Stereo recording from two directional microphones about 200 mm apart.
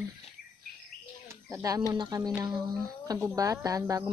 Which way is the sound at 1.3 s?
15° right (ahead or behind).